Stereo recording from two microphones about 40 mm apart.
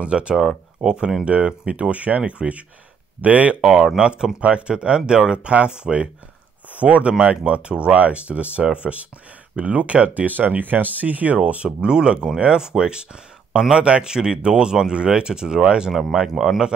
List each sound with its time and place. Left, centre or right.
0.0 s speech: right
3.6 s speech: centre
4.4 s speech: right
6.7 s speech: right
10.2 s speech: right
11.8 s speech: right
16.3 s speech: centre